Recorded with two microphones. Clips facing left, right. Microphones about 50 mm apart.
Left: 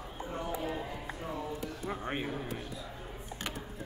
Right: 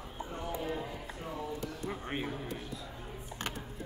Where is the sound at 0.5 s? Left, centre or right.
Centre.